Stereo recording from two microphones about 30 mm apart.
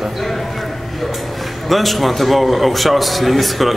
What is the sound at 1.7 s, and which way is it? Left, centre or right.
A man's voice, centre.